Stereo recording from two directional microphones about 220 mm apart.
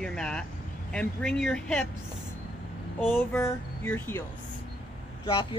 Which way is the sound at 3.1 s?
10° left (ahead or behind).